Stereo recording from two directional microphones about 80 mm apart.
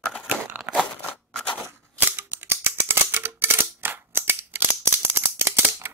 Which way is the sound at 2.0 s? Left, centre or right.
Right.